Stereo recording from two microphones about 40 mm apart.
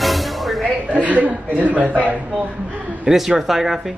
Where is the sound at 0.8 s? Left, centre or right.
Right.